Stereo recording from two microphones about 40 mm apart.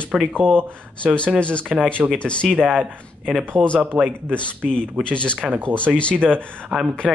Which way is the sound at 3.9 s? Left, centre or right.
Right.